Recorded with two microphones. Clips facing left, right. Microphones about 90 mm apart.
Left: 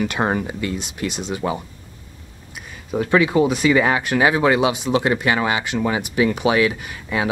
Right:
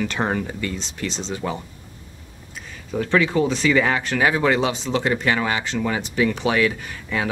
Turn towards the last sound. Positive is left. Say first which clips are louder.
# left 2 dB
turn(degrees=10)  # may be behind; listen again after turning